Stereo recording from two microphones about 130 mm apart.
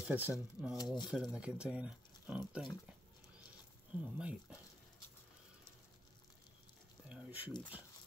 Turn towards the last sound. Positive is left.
turn(degrees=-10)  # may be behind; listen again after turning